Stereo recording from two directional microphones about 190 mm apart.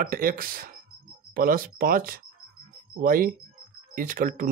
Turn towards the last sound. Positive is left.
turn(degrees=-50)  # may be behind; listen again after turning